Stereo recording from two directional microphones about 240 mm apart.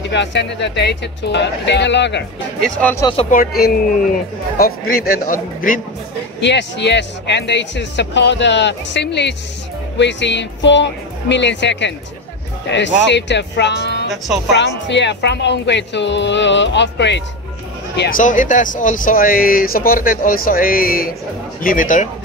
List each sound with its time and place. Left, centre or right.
0.1 s speech: left
2.6 s speech: centre
3.3 s speech: left
6.4 s speech: left
14.1 s speech: centre
14.9 s speech: left